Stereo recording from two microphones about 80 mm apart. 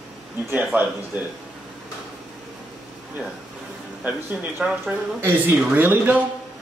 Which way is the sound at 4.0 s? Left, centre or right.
Right.